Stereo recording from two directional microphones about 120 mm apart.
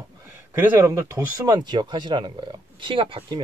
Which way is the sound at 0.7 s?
25° right (ahead or behind).